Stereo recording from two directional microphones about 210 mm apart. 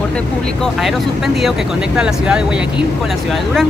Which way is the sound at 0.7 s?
Centre (ahead or behind).